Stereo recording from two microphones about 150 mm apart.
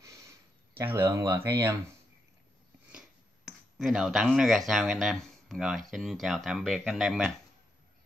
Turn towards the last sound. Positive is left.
turn(degrees=0)  # may be behind; listen again after turning